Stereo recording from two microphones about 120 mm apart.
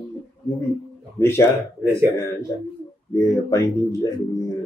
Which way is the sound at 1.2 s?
20° left (ahead or behind).